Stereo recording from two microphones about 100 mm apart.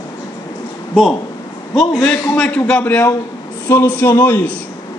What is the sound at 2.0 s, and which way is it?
A man's voice, 5° left (ahead or behind).